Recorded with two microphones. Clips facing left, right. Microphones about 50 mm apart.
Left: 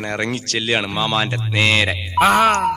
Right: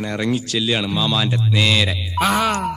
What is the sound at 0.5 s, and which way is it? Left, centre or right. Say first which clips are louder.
Speech: even; left.